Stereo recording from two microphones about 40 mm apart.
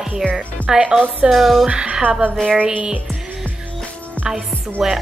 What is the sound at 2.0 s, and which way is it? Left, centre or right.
Music, right.